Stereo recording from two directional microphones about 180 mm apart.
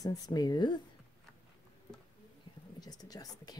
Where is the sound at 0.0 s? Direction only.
20° left (ahead or behind).